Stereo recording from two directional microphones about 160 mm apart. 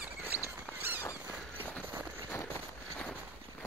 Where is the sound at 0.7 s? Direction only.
10° left (ahead or behind).